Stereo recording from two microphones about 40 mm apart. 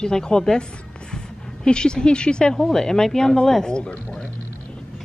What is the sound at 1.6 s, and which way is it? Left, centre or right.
A woman's voice, left.